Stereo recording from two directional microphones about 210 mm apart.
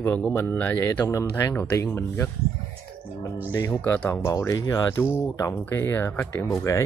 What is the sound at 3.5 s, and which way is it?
Speech, 10° left (ahead or behind).